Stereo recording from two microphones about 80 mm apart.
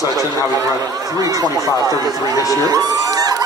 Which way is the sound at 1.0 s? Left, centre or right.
Right.